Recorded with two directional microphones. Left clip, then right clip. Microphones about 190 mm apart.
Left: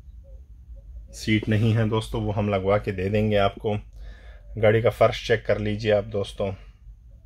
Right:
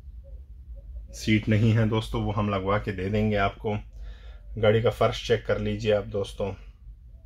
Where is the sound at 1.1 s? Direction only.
10° left (ahead or behind).